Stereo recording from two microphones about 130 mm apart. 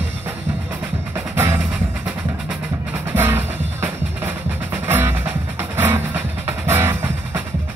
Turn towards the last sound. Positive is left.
turn(degrees=-15)  # may be behind; listen again after turning